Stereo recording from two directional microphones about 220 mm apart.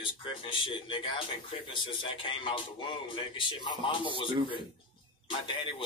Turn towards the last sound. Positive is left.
turn(degrees=20)  # may be behind; listen again after turning